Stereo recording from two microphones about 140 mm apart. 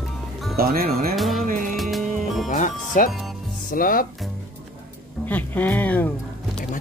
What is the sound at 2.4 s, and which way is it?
Music, 65° left (ahead or behind).